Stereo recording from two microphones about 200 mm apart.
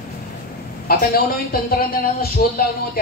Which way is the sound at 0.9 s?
50° left (ahead or behind).